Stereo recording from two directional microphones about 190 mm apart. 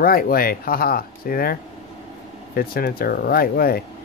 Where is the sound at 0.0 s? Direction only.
50° left (ahead or behind).